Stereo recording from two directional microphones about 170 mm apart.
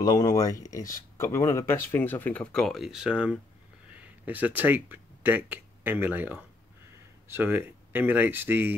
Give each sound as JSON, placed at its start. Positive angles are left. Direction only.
{"t": 0.0, "sound": "speech", "side_deg": 20}